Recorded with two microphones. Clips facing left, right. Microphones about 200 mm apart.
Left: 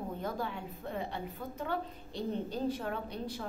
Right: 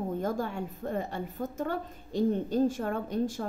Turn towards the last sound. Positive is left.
turn(degrees=-45)  # may be behind; listen again after turning